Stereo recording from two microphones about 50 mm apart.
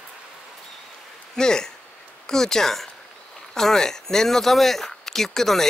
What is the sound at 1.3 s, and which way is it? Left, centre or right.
Speech, centre.